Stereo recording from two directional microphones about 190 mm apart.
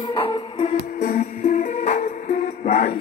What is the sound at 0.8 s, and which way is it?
Music, 50° left (ahead or behind).